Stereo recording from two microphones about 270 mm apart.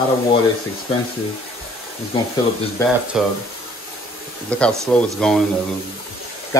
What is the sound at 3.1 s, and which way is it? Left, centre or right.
Speech, centre.